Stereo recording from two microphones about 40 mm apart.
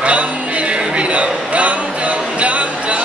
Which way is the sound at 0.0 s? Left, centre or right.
Right.